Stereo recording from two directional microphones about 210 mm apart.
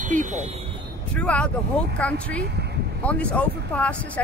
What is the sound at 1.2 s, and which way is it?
Speech, 5° left (ahead or behind).